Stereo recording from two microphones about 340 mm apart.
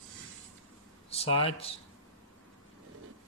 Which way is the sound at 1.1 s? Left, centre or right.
Centre.